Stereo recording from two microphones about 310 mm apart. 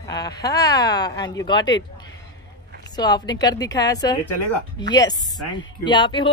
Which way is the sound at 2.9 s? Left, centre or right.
Centre.